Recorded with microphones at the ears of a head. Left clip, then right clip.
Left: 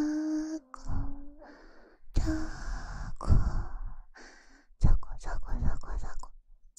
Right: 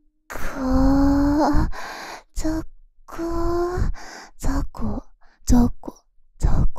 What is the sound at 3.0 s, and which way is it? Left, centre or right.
Gasp, right.